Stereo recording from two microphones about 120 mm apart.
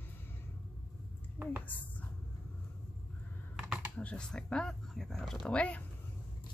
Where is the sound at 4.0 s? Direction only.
10° left (ahead or behind).